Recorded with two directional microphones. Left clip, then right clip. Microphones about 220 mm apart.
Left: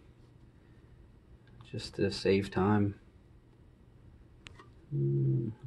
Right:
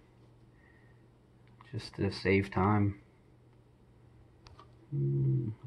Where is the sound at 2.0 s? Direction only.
Centre (ahead or behind).